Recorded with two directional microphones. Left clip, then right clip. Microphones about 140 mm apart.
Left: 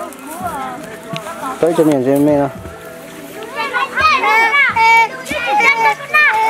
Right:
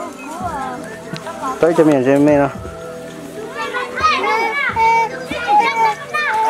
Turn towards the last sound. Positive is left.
turn(degrees=20)  # may be behind; listen again after turning